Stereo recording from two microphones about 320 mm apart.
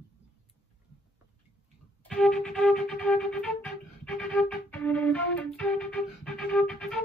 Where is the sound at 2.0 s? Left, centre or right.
Centre.